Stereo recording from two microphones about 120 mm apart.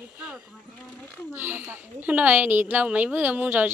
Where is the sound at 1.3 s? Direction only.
15° right (ahead or behind).